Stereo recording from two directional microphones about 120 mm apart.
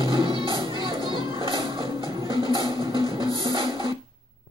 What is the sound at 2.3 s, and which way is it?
Music, 45° right (ahead or behind).